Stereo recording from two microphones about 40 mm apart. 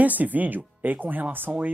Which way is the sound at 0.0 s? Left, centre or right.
Right.